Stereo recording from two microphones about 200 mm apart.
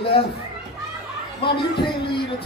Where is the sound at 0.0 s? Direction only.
25° left (ahead or behind).